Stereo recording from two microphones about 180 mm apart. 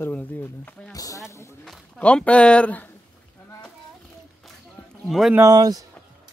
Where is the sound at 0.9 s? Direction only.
20° left (ahead or behind).